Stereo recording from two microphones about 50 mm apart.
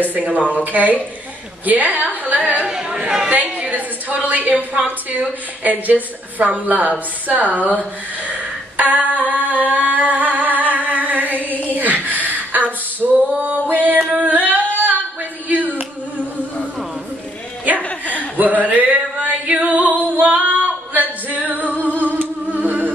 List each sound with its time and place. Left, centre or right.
0.1 s a woman's voice: right
2.9 s a woman's voice: centre
3.3 s a woman's voice: right
8.7 s a sound: right
9.7 s music: right
11.7 s a sound: right
13.0 s female singing: right
15.4 s a sound: right
17.7 s chuckle: left
18.1 s a sound: right
19.6 s female singing: right
22.0 s music: right